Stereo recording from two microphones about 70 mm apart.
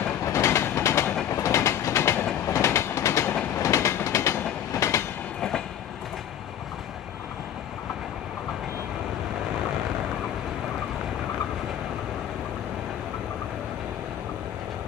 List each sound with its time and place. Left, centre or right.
0.2 s train: left